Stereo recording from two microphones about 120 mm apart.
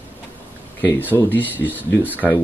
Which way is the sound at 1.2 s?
15° left (ahead or behind).